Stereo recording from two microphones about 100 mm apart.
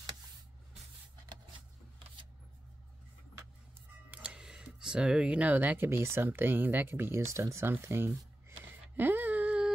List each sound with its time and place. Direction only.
4.1 s speech: 10° right (ahead or behind)